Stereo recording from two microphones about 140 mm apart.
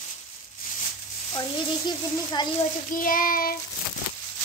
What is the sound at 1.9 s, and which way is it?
Speech, 30° left (ahead or behind).